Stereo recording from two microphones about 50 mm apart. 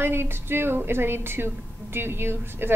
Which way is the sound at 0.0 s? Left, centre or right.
Right.